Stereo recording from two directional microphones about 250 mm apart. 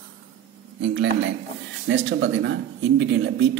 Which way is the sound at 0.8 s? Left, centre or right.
Right.